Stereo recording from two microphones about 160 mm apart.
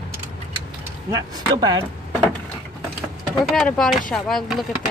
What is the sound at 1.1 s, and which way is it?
Speech, 25° right (ahead or behind).